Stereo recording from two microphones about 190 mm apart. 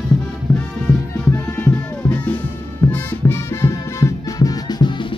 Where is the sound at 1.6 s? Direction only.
10° left (ahead or behind).